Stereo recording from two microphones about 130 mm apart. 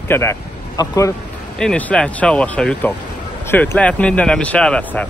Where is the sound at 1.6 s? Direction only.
10° left (ahead or behind).